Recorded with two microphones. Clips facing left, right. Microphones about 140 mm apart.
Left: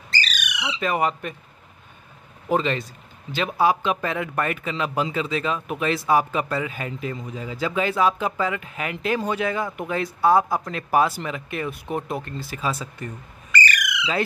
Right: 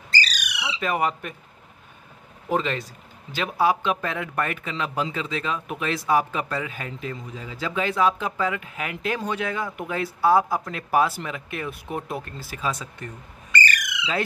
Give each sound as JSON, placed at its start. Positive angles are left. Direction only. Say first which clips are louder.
{"t": 0.1, "sound": "squawk", "louder": "right 1 dB", "side_deg": -40}
{"t": 0.7, "sound": "speech", "louder": "left 1 dB", "side_deg": -5}
{"t": 2.5, "sound": "speech", "louder": "left 2 dB", "side_deg": 0}